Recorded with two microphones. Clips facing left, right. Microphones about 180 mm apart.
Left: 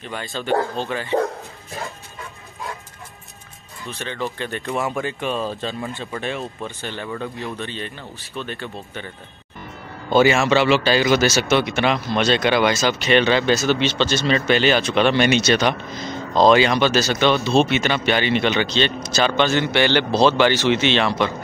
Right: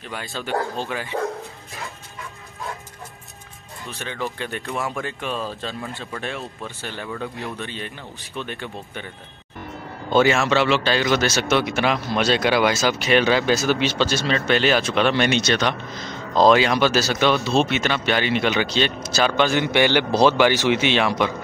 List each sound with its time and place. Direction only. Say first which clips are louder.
0.1 s a man's voice: left 4 dB; 5° right (ahead or behind)
1.2 s bow-wow: left 1 dB; 35° left (ahead or behind)
4.0 s a man's voice: left 2 dB; 5° right (ahead or behind)
10.0 s a man's voice: left 2 dB; 5° left (ahead or behind)
16.3 s a man's voice: left 1 dB; 5° right (ahead or behind)